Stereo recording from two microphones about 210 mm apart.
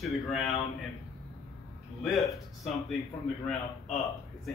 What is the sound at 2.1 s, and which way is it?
Speech, centre (ahead or behind).